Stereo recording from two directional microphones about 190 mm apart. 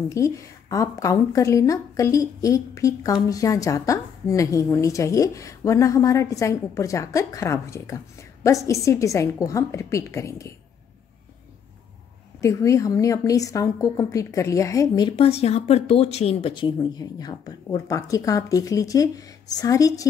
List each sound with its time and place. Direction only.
0.1 s a woman's voice: 15° left (ahead or behind)
12.4 s a woman's voice: 15° left (ahead or behind)